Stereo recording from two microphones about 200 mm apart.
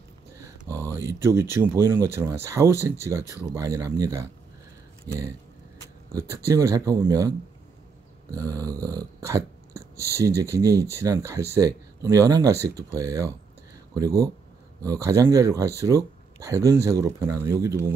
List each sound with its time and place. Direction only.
0.7 s a sound: 10° left (ahead or behind)
0.9 s dog: 15° right (ahead or behind)
8.4 s dog: 15° right (ahead or behind)